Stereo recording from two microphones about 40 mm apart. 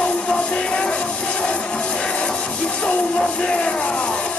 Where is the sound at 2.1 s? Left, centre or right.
Left.